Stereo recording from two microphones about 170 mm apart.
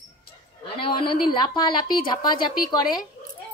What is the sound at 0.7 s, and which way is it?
A woman's voice, 30° left (ahead or behind).